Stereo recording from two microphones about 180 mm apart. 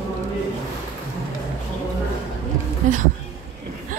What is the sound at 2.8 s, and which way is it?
Speech, 45° right (ahead or behind).